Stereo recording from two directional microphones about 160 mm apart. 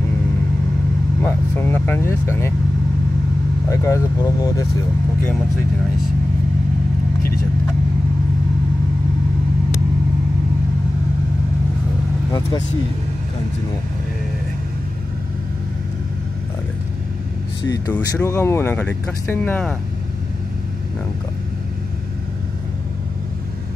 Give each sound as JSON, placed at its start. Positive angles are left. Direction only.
{"t": 1.2, "sound": "speech", "side_deg": 10}
{"t": 3.6, "sound": "speech", "side_deg": 20}
{"t": 17.6, "sound": "speech", "side_deg": 15}